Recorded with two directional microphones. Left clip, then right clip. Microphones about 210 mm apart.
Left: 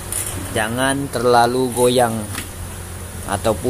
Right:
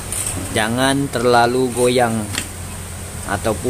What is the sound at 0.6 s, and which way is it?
Speech, 15° right (ahead or behind).